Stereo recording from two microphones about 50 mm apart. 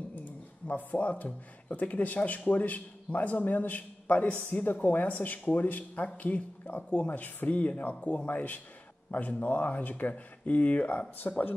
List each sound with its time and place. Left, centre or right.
0.7 s speech: left